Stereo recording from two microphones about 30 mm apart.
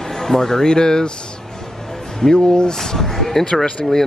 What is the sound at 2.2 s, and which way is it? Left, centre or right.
Speech, left.